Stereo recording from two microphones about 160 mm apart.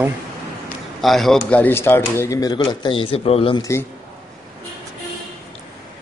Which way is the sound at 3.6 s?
15° left (ahead or behind).